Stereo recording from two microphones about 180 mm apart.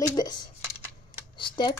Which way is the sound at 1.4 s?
25° left (ahead or behind).